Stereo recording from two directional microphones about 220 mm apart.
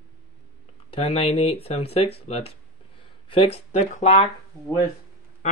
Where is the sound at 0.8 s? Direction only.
25° left (ahead or behind).